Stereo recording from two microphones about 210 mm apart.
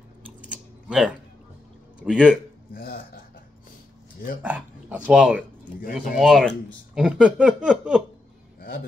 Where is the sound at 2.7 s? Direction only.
45° left (ahead or behind).